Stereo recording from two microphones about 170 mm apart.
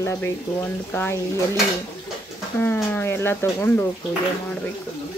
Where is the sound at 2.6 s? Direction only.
10° left (ahead or behind).